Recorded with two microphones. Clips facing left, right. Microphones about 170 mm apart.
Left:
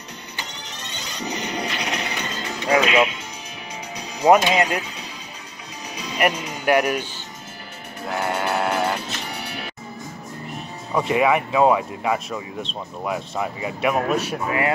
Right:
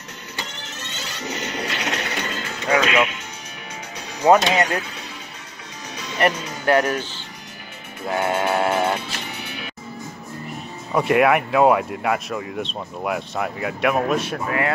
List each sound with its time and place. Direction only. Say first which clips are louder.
0.9 s music: left 1 dB; 15° left (ahead or behind)
2.7 s speech: left 1 dB; 30° left (ahead or behind)
4.2 s speech: even; 10° left (ahead or behind)
6.1 s speech: right 1 dB; 15° left (ahead or behind)
8.1 s speech: right 3 dB; centre (ahead or behind)
10.9 s speech: right 2 dB; 5° right (ahead or behind)